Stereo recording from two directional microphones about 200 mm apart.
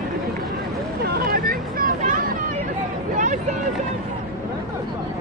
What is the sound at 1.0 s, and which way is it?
Vehicle, 55° right (ahead or behind).